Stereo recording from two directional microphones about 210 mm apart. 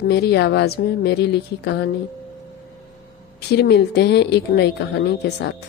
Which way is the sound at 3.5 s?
50° left (ahead or behind).